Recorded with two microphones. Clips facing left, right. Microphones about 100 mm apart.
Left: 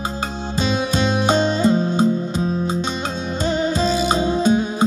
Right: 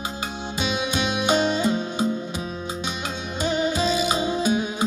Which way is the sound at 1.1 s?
35° left (ahead or behind).